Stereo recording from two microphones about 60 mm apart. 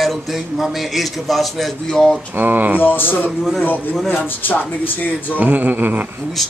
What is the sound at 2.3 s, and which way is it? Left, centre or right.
Speech, right.